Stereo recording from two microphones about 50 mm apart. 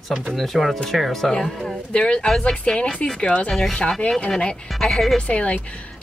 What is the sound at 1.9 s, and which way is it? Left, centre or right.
A woman's voice, left.